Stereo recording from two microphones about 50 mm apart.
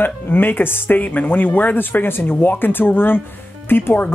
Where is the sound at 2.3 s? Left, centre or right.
Left.